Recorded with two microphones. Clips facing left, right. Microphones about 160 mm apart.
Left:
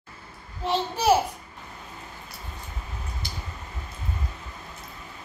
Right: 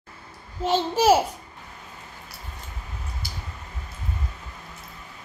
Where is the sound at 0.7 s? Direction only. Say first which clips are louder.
Right 4 dB; 90° right.